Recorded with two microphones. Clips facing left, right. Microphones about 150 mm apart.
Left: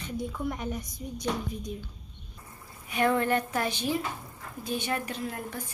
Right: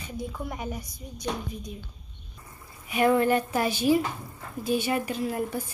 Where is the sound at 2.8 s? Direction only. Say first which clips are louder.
Right 4 dB; 10° right (ahead or behind).